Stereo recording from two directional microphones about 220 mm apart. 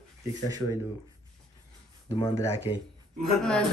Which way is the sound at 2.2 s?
10° left (ahead or behind).